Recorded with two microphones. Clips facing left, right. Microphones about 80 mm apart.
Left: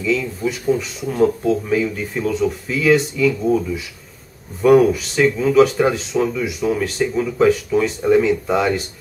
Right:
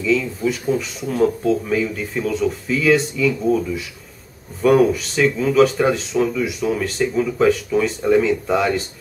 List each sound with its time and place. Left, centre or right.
0.0 s speech: centre